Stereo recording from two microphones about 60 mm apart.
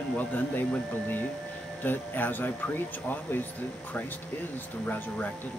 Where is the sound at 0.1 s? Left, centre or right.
Left.